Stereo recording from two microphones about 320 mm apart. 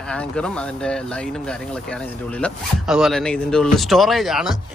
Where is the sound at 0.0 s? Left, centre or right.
Centre.